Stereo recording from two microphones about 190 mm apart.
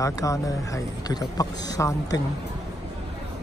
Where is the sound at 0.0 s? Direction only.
15° left (ahead or behind).